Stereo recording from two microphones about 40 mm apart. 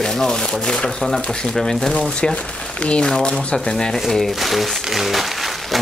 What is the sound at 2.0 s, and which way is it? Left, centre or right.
Speech, left.